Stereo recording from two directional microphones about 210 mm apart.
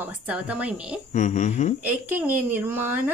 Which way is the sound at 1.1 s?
35° left (ahead or behind).